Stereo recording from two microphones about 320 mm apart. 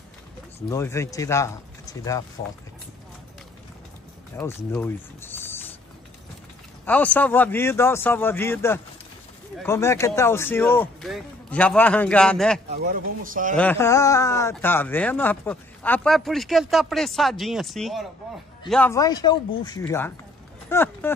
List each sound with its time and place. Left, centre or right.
0.6 s a man's voice: centre
4.4 s speech: centre
6.9 s a man's voice: centre
12.6 s speech: right
13.6 s a man's voice: centre